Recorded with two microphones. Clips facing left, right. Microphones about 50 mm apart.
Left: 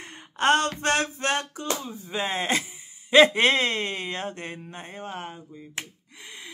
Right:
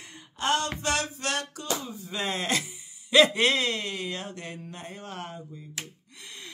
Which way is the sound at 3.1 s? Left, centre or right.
Left.